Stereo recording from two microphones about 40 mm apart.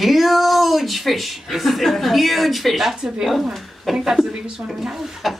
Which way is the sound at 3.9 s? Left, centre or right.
Centre.